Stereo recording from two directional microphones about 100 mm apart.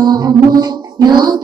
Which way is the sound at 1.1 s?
45° right (ahead or behind).